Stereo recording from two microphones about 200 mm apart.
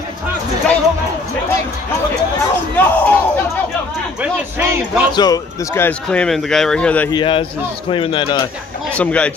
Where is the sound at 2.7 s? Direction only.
10° left (ahead or behind).